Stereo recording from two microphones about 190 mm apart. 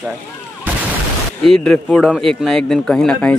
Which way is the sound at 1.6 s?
5° left (ahead or behind).